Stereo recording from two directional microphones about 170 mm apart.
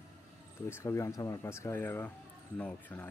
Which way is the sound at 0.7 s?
15° left (ahead or behind).